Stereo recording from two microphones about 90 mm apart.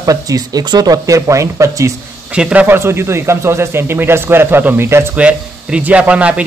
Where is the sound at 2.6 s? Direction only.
25° right (ahead or behind).